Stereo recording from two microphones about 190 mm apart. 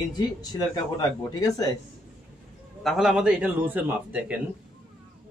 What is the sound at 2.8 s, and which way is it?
A man's voice, centre (ahead or behind).